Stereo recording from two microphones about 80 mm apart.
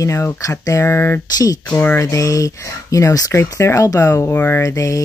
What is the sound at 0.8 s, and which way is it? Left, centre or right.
Speech, left.